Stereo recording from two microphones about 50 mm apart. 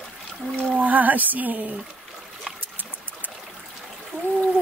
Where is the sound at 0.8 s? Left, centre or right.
Right.